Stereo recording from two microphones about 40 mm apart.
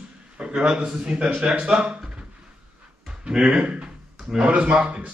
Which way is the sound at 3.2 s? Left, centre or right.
Centre.